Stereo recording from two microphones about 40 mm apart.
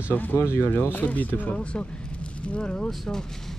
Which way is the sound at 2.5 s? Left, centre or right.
Left.